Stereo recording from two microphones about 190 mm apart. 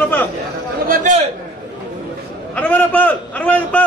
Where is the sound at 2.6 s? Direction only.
10° left (ahead or behind).